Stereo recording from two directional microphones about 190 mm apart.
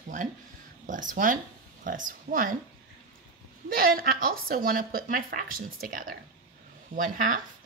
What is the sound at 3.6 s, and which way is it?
A woman's voice, 50° right (ahead or behind).